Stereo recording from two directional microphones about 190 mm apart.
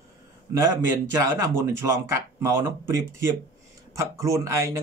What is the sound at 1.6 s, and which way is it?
Speech, 15° right (ahead or behind).